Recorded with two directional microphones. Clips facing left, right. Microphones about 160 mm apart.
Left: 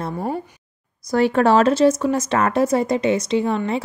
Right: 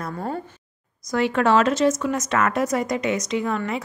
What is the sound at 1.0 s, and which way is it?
A woman's voice, 35° left (ahead or behind).